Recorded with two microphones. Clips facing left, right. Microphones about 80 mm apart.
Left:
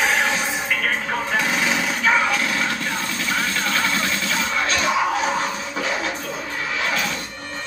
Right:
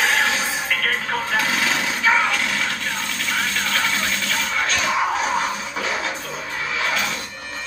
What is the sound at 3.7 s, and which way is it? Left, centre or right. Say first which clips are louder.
Vehicle: left 1 dB; left.